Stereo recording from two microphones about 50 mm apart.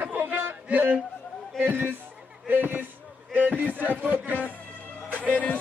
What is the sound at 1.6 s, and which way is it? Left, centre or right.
Speech, right.